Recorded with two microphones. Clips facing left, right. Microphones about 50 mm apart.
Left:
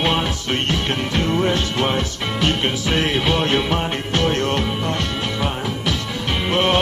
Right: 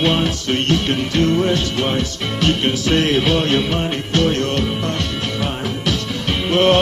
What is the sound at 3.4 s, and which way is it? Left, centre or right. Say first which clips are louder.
Music: right 1 dB; centre.